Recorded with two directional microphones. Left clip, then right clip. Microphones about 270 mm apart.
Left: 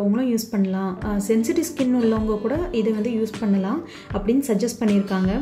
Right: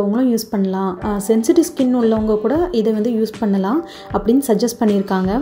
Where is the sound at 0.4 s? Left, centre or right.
Centre.